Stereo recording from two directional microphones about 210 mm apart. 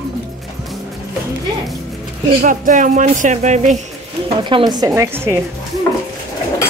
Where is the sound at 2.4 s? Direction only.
40° right (ahead or behind).